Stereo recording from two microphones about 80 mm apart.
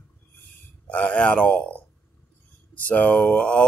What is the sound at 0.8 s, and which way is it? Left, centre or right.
Speech, centre.